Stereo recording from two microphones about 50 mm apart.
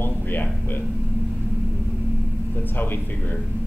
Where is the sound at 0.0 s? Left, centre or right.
Left.